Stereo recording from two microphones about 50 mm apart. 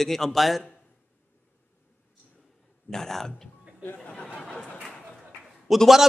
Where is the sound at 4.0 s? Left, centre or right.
Left.